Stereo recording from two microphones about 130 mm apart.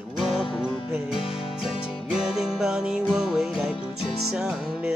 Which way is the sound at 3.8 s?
45° left (ahead or behind).